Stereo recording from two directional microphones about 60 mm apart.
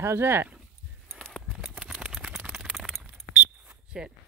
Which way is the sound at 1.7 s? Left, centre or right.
Centre.